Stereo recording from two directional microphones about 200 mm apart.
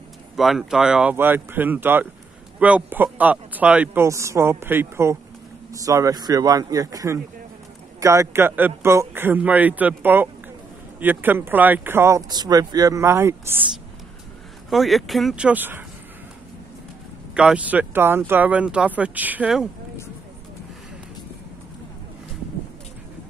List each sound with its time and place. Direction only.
0.4 s speech: centre (ahead or behind)
14.7 s speech: centre (ahead or behind)
17.3 s speech: 5° right (ahead or behind)